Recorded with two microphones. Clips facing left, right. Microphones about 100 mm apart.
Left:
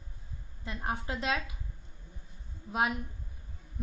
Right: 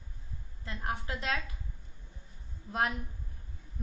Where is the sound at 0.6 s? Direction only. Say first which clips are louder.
Left 2 dB; 25° left (ahead or behind).